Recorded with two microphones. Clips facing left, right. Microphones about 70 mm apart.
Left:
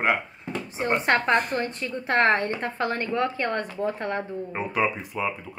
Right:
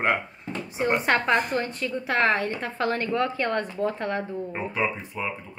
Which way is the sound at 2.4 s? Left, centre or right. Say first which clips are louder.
Left 1 dB; left.